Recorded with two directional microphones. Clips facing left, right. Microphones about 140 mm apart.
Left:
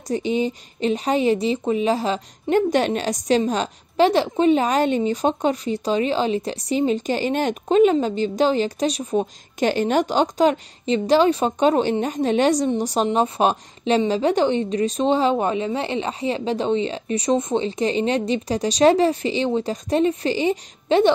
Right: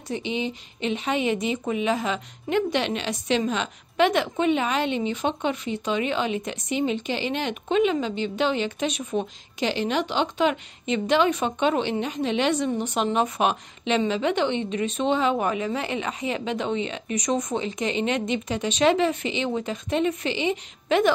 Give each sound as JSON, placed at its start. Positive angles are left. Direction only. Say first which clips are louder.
{"t": 0.1, "sound": "speech", "louder": "left 6 dB", "side_deg": 40}
{"t": 9.6, "sound": "speech", "louder": "left 6 dB", "side_deg": 45}